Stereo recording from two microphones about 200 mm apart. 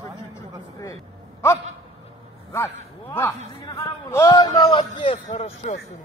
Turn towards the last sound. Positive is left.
turn(degrees=35)  # may be behind; listen again after turning